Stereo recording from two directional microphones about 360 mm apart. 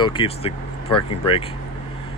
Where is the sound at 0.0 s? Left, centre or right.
Centre.